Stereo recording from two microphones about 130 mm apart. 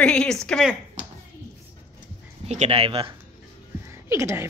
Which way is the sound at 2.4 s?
55° right (ahead or behind).